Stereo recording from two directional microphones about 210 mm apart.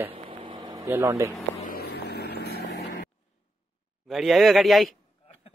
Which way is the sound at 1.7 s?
50° left (ahead or behind).